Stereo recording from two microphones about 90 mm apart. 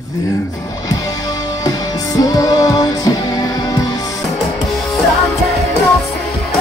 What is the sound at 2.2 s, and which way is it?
Music, 45° left (ahead or behind).